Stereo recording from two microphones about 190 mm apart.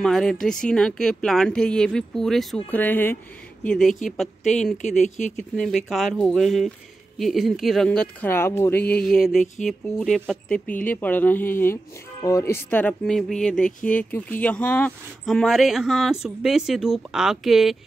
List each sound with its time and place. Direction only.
0.0 s speech: centre (ahead or behind)
5.0 s speech: 40° left (ahead or behind)
5.3 s speech: centre (ahead or behind)